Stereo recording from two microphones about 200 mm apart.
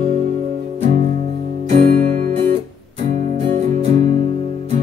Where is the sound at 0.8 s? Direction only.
40° right (ahead or behind).